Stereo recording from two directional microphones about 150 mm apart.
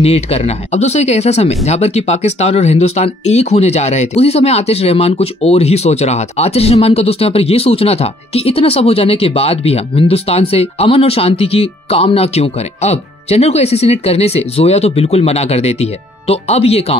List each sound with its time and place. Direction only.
0.0 s speech: 45° left (ahead or behind)